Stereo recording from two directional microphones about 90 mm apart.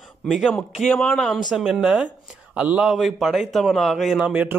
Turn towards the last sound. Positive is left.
turn(degrees=-15)  # may be behind; listen again after turning